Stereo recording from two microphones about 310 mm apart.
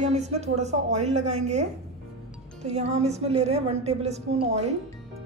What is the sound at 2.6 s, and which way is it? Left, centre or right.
A woman's voice, right.